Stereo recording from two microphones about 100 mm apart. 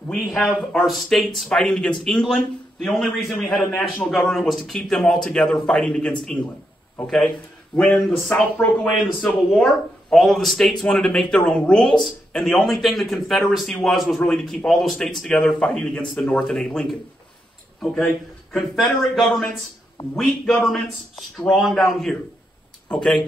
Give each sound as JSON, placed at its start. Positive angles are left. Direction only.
{"t": 0.1, "sound": "speech", "side_deg": 5}
{"t": 7.7, "sound": "speech", "side_deg": 15}
{"t": 8.4, "sound": "speech", "side_deg": 0}
{"t": 20.6, "sound": "speech", "side_deg": 0}